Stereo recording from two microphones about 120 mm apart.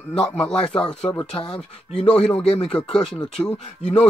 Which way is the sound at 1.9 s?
55° left (ahead or behind).